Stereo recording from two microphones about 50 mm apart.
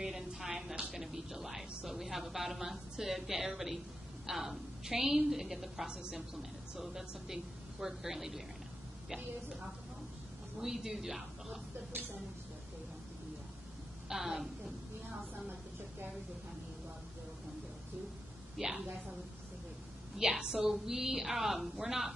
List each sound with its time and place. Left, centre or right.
0.0 s a sound: centre
1.9 s a woman's voice: centre
10.6 s a woman's voice: centre
11.9 s speech: right
14.0 s a woman's voice: centre
18.6 s a woman's voice: centre
20.2 s a woman's voice: centre